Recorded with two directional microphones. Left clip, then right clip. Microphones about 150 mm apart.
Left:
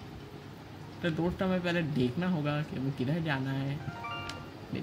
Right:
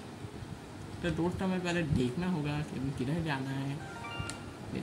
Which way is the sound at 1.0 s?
65° left (ahead or behind).